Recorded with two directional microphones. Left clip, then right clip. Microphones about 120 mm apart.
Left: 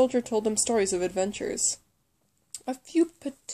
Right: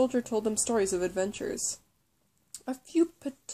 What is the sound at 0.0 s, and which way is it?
Speech, 25° left (ahead or behind).